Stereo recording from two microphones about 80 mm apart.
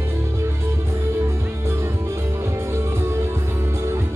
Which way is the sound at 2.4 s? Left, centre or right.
Right.